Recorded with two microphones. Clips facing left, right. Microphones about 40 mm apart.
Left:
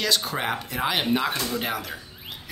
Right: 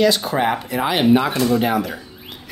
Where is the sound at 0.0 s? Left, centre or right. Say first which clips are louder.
Right 9 dB; centre.